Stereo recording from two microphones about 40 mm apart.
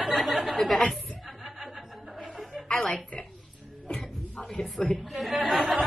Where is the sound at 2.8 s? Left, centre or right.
Centre.